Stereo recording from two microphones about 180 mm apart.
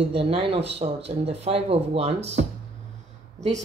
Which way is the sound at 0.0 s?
35° right (ahead or behind).